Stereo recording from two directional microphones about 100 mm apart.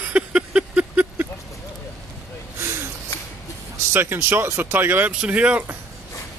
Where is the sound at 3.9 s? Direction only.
25° right (ahead or behind).